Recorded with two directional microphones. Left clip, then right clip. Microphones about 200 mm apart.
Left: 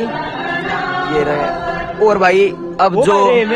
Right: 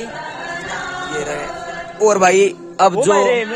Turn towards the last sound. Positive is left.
turn(degrees=0)  # may be behind; listen again after turning